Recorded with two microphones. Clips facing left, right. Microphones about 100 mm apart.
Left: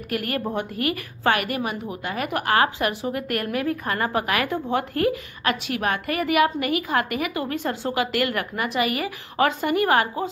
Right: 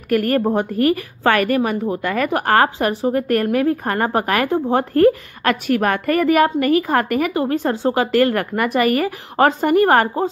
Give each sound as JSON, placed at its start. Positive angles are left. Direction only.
{"t": 0.1, "sound": "a woman's voice", "side_deg": -40}
{"t": 8.5, "sound": "a woman's voice", "side_deg": -50}